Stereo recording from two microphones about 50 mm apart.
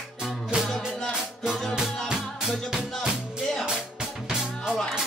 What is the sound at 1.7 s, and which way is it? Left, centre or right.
Music, centre.